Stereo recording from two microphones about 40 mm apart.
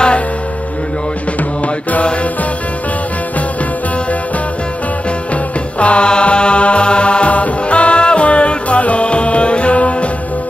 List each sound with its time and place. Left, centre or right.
5.3 s music: left